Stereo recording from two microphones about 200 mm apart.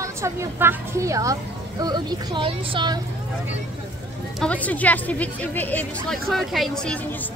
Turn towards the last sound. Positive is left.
turn(degrees=5)  # may be behind; listen again after turning